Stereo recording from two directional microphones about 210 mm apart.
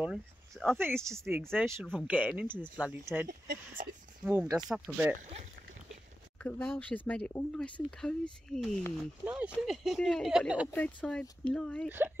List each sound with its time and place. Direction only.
0.0 s speech: centre (ahead or behind)
1.0 s speech: 15° right (ahead or behind)
1.5 s speech: centre (ahead or behind)
3.3 s speech: 45° right (ahead or behind)
4.3 s speech: 10° right (ahead or behind)
6.3 s speech: 5° left (ahead or behind)
9.2 s speech: 10° right (ahead or behind)
10.7 s speech: 5° left (ahead or behind)